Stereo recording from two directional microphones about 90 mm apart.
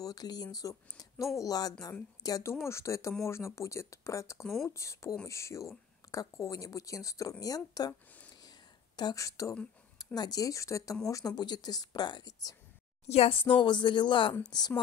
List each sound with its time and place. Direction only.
0.0 s speech: 45° left (ahead or behind)
8.4 s a sound: 50° left (ahead or behind)
9.9 s speech: 45° left (ahead or behind)
13.3 s speech: 70° left (ahead or behind); by 14.7 s 55° left (ahead or behind)